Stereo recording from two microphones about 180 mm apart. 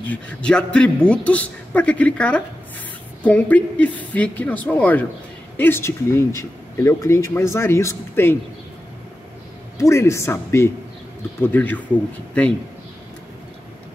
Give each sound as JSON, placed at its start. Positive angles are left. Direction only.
{"t": 0.0, "sound": "speech", "side_deg": 5}
{"t": 9.8, "sound": "speech", "side_deg": 15}